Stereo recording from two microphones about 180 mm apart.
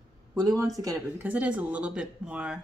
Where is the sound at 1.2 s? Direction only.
5° right (ahead or behind).